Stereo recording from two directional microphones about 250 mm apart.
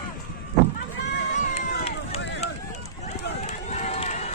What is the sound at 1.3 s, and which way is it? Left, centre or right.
Run, left.